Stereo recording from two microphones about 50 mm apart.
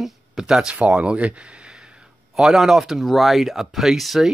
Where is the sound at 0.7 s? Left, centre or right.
Right.